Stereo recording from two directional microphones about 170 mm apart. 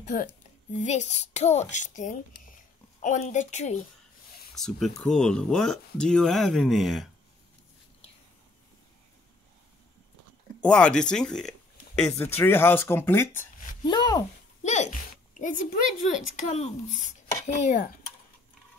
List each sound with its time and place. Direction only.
0.0 s a woman's voice: 45° left (ahead or behind)
4.6 s speech: centre (ahead or behind)
10.6 s speech: 5° left (ahead or behind)
13.8 s speech: 25° left (ahead or behind)
14.6 s speech: 45° left (ahead or behind)